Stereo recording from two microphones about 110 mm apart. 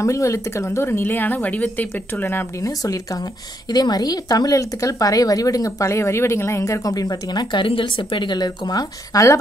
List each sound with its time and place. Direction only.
0.0 s speech: 25° left (ahead or behind)
2.8 s speech: 35° left (ahead or behind)